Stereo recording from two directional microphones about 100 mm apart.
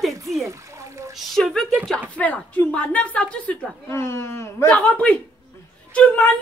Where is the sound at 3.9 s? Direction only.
25° left (ahead or behind).